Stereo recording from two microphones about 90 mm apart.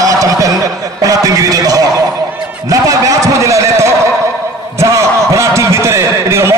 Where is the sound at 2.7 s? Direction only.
40° right (ahead or behind).